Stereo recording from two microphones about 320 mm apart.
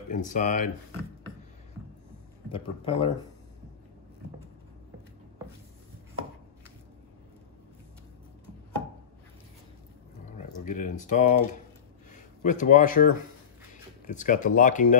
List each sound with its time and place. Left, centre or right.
0.1 s speech: left
2.5 s speech: centre
10.3 s speech: left